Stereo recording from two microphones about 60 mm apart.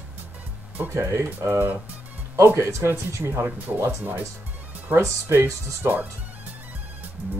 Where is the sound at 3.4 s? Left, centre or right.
Right.